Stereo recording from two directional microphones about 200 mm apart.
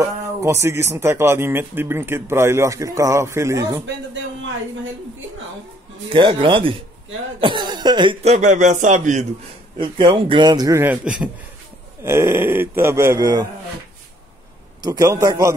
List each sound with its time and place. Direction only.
0.0 s speech: 15° right (ahead or behind)
6.0 s a man's voice: 25° right (ahead or behind)
9.8 s a man's voice: 25° right (ahead or behind)
14.8 s speech: 20° right (ahead or behind)